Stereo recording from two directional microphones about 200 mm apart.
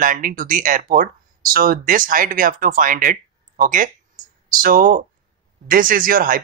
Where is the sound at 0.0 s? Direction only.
40° right (ahead or behind).